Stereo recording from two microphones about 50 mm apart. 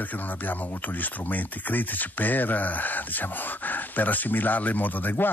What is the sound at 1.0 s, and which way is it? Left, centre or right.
Speech, left.